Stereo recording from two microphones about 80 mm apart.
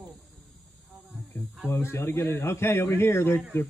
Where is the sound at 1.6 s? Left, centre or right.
Left.